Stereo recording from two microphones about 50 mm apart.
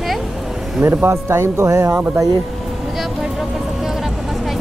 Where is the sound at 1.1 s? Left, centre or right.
Right.